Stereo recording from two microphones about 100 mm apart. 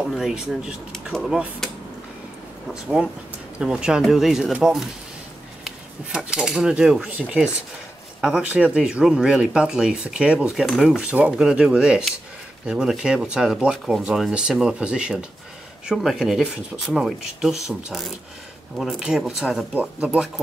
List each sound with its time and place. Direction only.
0.0 s speech: 5° right (ahead or behind)
2.7 s speech: 5° right (ahead or behind)
6.1 s speech: 5° right (ahead or behind)
19.7 s speech: 15° right (ahead or behind)